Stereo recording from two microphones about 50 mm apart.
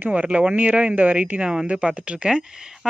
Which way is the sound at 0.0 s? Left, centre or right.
Right.